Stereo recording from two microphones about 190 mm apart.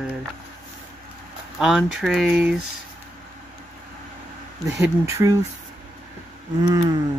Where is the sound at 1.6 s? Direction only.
5° right (ahead or behind).